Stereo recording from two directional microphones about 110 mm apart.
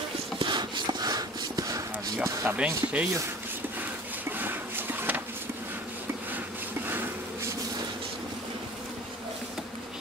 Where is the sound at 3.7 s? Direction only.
15° right (ahead or behind).